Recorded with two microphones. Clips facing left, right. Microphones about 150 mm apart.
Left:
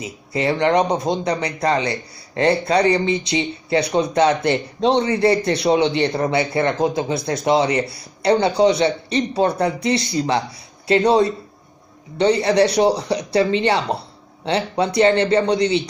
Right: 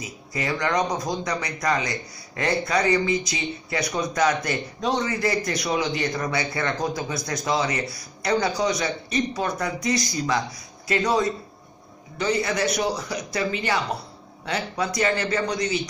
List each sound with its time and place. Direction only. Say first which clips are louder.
0.0 s a man's voice: left 8 dB; 30° left (ahead or behind)